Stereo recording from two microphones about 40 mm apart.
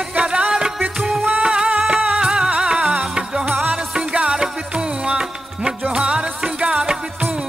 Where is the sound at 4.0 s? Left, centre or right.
Right.